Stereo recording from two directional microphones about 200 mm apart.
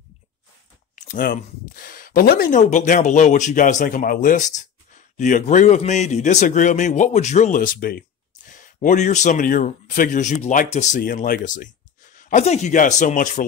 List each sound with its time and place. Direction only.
0.9 s speech: 45° left (ahead or behind)